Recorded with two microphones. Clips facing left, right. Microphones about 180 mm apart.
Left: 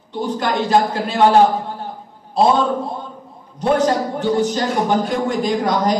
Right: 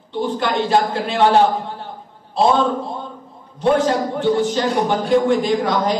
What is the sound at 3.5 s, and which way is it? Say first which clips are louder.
A man's voice: even; 40° left (ahead or behind).